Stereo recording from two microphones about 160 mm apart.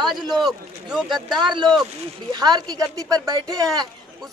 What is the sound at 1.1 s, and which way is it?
Speech, 30° right (ahead or behind).